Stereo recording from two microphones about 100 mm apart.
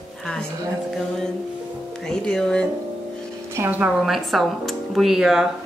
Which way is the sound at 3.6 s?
25° right (ahead or behind).